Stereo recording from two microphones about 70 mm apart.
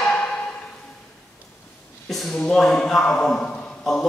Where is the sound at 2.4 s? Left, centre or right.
Centre.